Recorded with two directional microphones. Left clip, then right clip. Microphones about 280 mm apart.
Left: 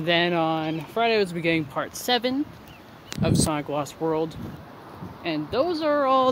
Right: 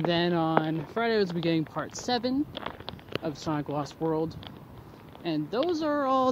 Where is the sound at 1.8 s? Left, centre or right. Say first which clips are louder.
Left 5 dB; centre.